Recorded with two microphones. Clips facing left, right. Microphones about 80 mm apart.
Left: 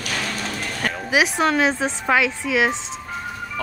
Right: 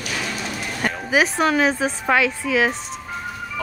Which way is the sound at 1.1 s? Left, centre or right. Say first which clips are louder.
Even; centre.